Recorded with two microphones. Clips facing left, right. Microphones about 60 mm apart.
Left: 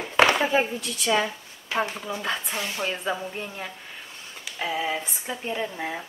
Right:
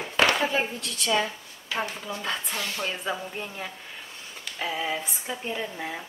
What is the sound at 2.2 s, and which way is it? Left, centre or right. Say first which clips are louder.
Speech: left 2 dB; centre.